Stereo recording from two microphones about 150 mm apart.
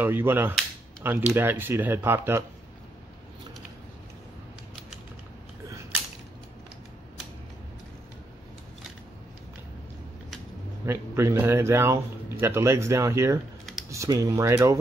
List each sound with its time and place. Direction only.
0.0 s speech: 15° right (ahead or behind)
10.9 s speech: 15° right (ahead or behind)